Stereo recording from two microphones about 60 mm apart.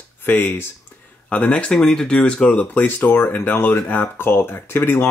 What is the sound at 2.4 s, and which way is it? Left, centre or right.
Speech, left.